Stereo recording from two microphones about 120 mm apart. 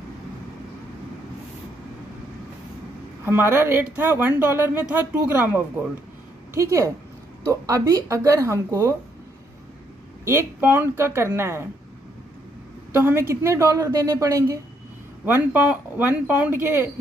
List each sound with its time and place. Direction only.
3.3 s a woman's voice: 20° right (ahead or behind)
10.2 s a woman's voice: 20° right (ahead or behind)
12.9 s a woman's voice: 20° right (ahead or behind)